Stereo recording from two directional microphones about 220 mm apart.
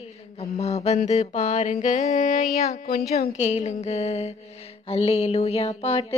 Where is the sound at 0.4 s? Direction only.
30° left (ahead or behind).